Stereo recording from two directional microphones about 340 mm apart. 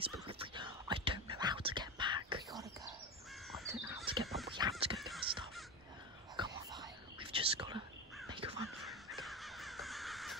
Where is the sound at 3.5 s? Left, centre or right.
Centre.